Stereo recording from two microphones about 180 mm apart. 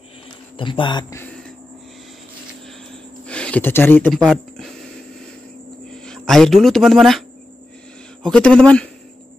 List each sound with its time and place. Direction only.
0.6 s speech: 25° left (ahead or behind)
3.3 s speech: 5° left (ahead or behind)
6.0 s speech: 5° left (ahead or behind)